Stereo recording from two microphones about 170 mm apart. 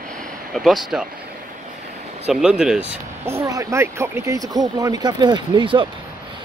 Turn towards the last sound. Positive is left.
turn(degrees=-30)  # may be behind; listen again after turning